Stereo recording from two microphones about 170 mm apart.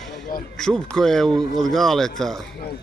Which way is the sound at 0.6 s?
5° left (ahead or behind).